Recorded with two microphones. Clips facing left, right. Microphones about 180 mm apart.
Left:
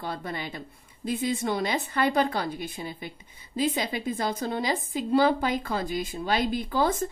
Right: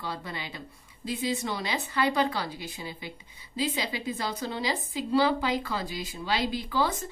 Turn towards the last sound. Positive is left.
turn(degrees=50)  # may be behind; listen again after turning